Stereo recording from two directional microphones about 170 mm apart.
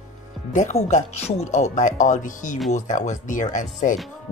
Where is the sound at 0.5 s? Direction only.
45° left (ahead or behind).